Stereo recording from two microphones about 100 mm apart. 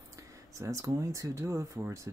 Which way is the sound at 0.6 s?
30° right (ahead or behind).